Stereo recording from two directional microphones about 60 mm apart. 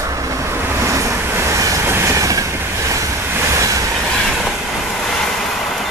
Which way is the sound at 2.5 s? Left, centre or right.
Right.